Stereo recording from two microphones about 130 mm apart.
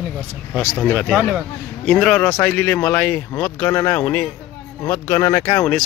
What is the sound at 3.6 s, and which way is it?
Speech, 20° left (ahead or behind).